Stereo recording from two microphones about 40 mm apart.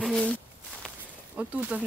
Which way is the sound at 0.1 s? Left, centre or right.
Left.